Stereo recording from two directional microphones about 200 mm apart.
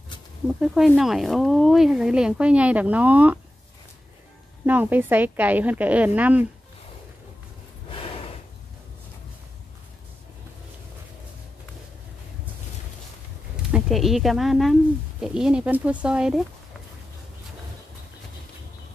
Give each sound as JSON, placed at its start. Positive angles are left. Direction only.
{"t": 0.5, "sound": "speech", "side_deg": 0}
{"t": 4.6, "sound": "a woman's voice", "side_deg": -10}
{"t": 7.9, "sound": "a sound", "side_deg": 25}
{"t": 13.7, "sound": "speech", "side_deg": 0}